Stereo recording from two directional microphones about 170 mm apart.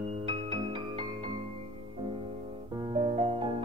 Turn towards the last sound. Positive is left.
turn(degrees=-30)  # may be behind; listen again after turning